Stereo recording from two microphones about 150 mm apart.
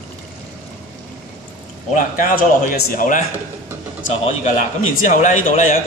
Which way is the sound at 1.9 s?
60° left (ahead or behind).